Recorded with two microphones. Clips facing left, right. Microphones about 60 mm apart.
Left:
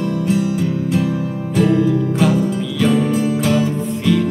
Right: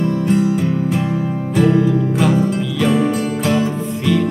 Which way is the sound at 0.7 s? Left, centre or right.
Right.